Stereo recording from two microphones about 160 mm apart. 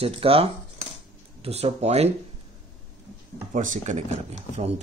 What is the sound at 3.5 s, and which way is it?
Speech, 50° right (ahead or behind).